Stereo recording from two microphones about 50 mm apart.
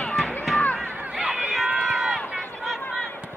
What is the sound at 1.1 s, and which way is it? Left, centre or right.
Run, centre.